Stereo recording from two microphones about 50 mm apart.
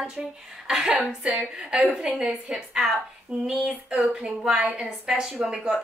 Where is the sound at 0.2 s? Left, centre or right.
Centre.